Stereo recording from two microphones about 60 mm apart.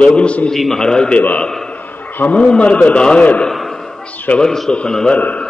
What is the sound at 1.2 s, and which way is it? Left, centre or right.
Speech, left.